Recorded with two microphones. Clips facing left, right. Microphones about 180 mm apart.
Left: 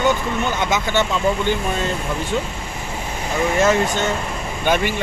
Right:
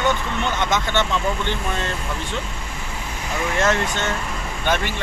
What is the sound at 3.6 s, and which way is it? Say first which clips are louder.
Speech: left 3 dB; 10° left (ahead or behind).